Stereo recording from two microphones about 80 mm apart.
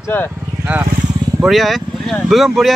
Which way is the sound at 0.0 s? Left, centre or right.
Left.